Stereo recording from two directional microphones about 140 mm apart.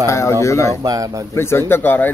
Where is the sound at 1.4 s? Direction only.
20° left (ahead or behind).